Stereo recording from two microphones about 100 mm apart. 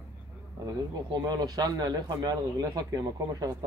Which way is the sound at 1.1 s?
45° right (ahead or behind).